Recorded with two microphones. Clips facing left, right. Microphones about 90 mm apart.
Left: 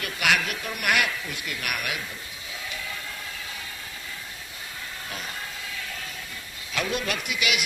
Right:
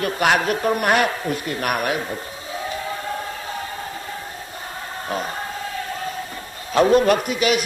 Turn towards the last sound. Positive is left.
turn(degrees=-40)  # may be behind; listen again after turning